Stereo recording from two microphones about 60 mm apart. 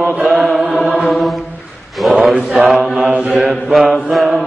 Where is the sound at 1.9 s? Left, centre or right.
Centre.